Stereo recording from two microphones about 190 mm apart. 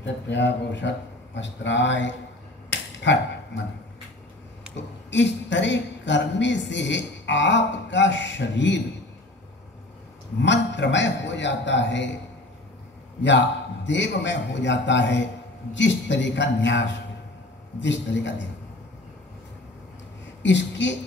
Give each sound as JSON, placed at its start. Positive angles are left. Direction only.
{"t": 0.0, "sound": "a man's voice", "side_deg": 70}
{"t": 4.7, "sound": "a woman's voice", "side_deg": 70}
{"t": 10.4, "sound": "a woman's voice", "side_deg": 70}
{"t": 13.8, "sound": "a woman's voice", "side_deg": 70}
{"t": 20.4, "sound": "a woman's voice", "side_deg": 70}